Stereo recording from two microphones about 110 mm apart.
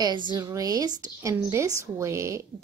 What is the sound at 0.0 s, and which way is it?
A woman's voice, 45° right (ahead or behind).